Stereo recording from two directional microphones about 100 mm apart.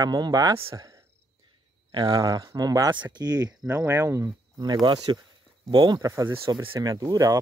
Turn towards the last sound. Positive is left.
turn(degrees=-40)  # may be behind; listen again after turning